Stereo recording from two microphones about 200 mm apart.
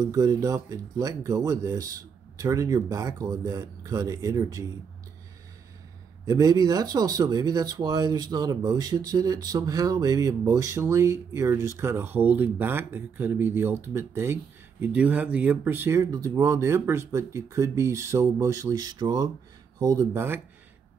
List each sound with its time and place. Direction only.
0.0 s speech: 15° right (ahead or behind)
6.2 s speech: 20° right (ahead or behind)